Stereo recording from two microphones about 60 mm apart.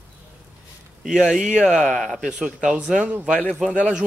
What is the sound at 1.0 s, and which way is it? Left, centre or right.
Speech, centre.